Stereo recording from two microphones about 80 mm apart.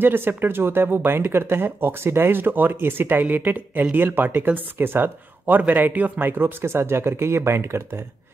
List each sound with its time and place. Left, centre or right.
0.0 s speech: right